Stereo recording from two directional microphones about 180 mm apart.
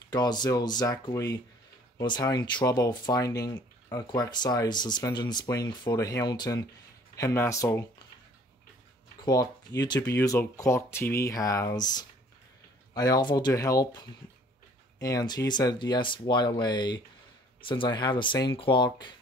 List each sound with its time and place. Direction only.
0.1 s speech: 25° left (ahead or behind)
9.2 s speech: 20° left (ahead or behind)